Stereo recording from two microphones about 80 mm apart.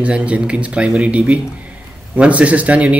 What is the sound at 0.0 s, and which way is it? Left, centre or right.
Speech, centre.